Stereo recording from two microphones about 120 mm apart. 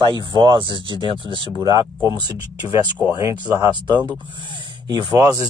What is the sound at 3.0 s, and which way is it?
Speech, 15° right (ahead or behind).